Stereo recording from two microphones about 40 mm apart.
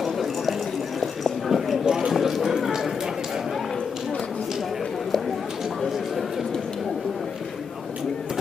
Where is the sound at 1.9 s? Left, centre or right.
Centre.